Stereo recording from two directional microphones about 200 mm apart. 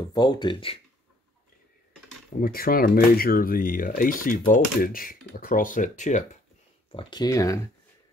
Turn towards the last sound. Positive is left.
turn(degrees=15)  # may be behind; listen again after turning